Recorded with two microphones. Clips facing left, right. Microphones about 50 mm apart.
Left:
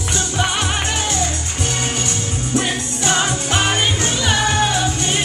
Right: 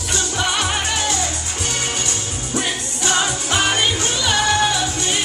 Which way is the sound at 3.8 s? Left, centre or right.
Left.